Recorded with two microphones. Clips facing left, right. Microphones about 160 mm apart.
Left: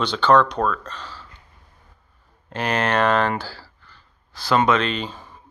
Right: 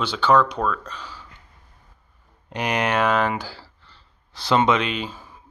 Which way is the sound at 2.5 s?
15° right (ahead or behind).